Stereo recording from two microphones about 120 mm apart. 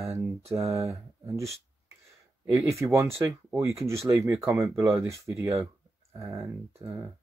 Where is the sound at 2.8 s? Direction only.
20° right (ahead or behind).